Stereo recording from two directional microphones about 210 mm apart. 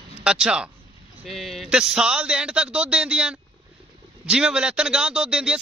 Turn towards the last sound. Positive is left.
turn(degrees=-5)  # may be behind; listen again after turning